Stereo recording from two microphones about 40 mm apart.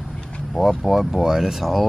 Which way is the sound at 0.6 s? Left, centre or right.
Centre.